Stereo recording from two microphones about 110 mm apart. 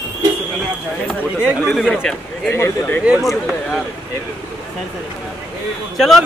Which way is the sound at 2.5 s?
25° left (ahead or behind).